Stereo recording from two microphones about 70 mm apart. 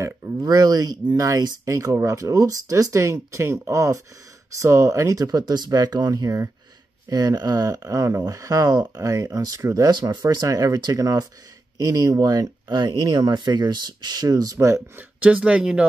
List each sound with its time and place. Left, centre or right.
0.4 s speech: right
9.8 s speech: right
15.0 s speech: centre